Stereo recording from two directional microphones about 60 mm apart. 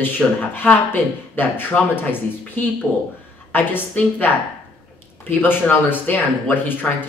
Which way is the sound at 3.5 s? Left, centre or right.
Left.